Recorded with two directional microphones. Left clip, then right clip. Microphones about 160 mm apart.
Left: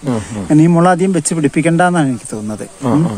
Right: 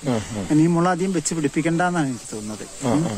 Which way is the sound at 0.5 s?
90° left.